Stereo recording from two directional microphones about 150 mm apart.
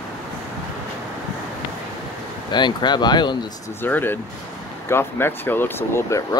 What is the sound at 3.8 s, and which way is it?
Speech, 15° left (ahead or behind).